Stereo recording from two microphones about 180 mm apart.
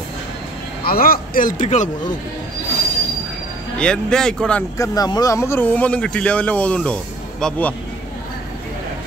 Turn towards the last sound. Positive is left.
turn(degrees=5)  # may be behind; listen again after turning